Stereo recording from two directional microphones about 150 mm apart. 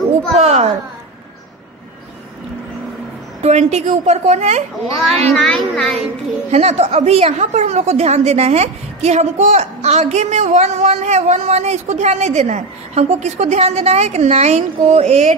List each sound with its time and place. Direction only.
0.4 s a woman's voice: 45° right (ahead or behind)
3.4 s a woman's voice: 50° right (ahead or behind)
5.3 s a child's voice: 5° left (ahead or behind)
6.5 s a woman's voice: 45° right (ahead or behind)